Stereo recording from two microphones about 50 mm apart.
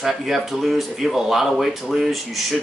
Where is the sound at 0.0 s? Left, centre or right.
Centre.